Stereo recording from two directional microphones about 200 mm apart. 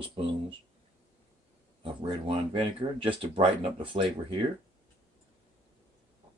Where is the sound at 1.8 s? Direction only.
25° right (ahead or behind).